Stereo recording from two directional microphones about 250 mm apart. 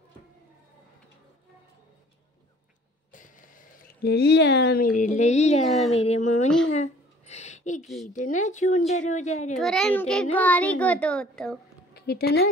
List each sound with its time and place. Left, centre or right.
3.1 s speech: left
6.7 s a sound: left
7.8 s a child's voice: centre
8.1 s speech: left
9.6 s a child's voice: centre
11.9 s a woman's voice: left